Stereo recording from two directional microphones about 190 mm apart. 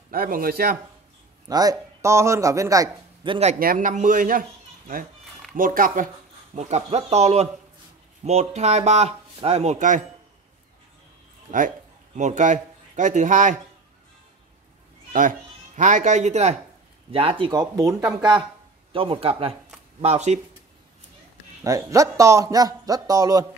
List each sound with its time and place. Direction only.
0.1 s speech: 50° right (ahead or behind)
1.5 s a man's voice: 20° right (ahead or behind)
3.5 s speech: 45° right (ahead or behind)
12.2 s speech: 40° right (ahead or behind)
15.1 s speech: 45° right (ahead or behind)
21.6 s a man's voice: 15° right (ahead or behind)